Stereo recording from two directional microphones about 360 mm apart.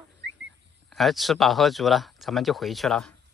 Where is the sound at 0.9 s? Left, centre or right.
Centre.